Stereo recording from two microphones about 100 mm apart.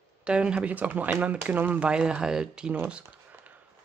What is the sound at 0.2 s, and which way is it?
Speech, 10° right (ahead or behind).